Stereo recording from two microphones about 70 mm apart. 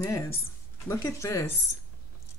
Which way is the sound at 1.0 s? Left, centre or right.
Left.